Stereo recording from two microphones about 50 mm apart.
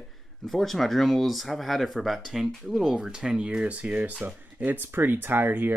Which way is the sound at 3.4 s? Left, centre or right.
Right.